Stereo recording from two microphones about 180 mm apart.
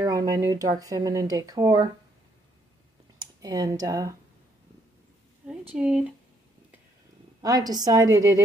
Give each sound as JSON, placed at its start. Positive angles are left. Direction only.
{"t": 0.0, "sound": "speech", "side_deg": -20}
{"t": 3.2, "sound": "speech", "side_deg": -20}
{"t": 5.8, "sound": "speech", "side_deg": -5}
{"t": 7.4, "sound": "speech", "side_deg": -20}